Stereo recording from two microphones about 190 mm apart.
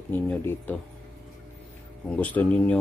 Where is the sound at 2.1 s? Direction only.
10° left (ahead or behind).